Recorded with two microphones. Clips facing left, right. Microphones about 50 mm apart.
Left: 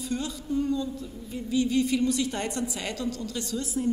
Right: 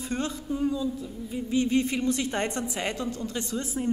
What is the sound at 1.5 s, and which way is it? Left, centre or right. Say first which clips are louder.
A woman's voice: left 1 dB; right.